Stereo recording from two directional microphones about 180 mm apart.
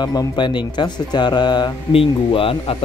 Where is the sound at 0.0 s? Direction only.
20° left (ahead or behind).